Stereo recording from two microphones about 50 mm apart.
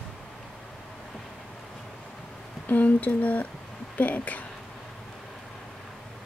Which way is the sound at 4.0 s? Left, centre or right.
Left.